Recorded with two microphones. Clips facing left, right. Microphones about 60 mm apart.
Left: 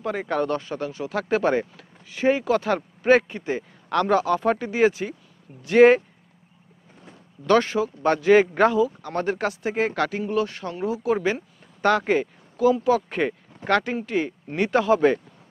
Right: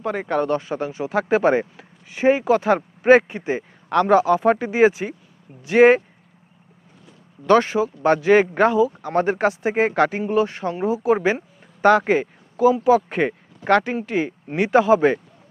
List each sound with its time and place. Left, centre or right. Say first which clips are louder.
0.0 s speech: right 3 dB; centre
7.4 s speech: right 3 dB; centre